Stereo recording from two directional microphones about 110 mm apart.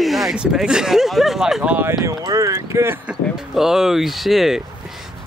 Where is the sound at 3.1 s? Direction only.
5° right (ahead or behind).